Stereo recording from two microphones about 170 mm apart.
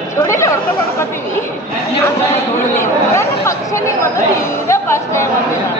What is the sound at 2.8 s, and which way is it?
Speech, 15° left (ahead or behind).